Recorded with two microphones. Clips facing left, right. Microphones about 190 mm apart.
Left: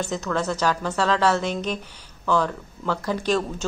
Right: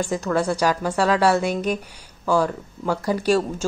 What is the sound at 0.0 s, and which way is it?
Speech, 10° right (ahead or behind).